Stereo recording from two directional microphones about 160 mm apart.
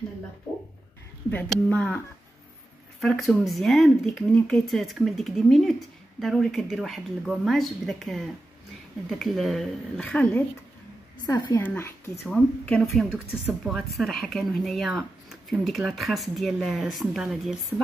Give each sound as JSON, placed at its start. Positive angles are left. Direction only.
{"t": 1.3, "sound": "speech", "side_deg": 5}
{"t": 3.0, "sound": "speech", "side_deg": 0}
{"t": 9.2, "sound": "speech", "side_deg": 0}
{"t": 11.2, "sound": "a woman's voice", "side_deg": 25}
{"t": 11.6, "sound": "a woman's voice", "side_deg": 15}